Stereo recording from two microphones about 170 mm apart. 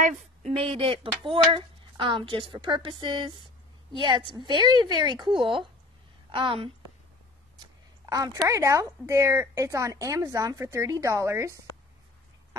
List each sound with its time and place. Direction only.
0.0 s a woman's voice: 40° right (ahead or behind)
8.0 s speech: 20° right (ahead or behind)